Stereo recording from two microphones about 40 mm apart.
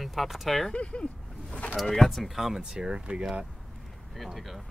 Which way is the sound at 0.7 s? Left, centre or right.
Left.